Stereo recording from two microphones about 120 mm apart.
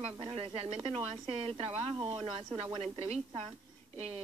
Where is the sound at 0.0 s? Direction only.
50° right (ahead or behind).